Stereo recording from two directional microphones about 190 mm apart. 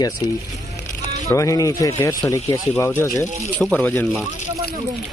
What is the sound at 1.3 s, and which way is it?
Speech, 15° left (ahead or behind).